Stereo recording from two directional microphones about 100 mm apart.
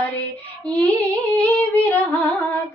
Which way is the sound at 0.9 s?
20° left (ahead or behind).